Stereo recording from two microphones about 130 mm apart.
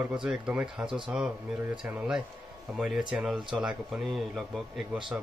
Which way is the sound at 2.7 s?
5° right (ahead or behind).